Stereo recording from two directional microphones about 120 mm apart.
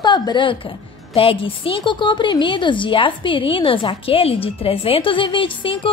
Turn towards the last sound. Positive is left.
turn(degrees=45)  # may be behind; listen again after turning